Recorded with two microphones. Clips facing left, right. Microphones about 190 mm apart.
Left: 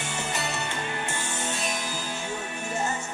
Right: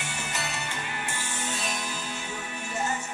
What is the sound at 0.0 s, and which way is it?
Music, 25° left (ahead or behind).